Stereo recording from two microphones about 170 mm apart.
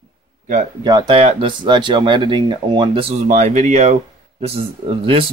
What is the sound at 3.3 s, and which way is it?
Speech, 45° right (ahead or behind).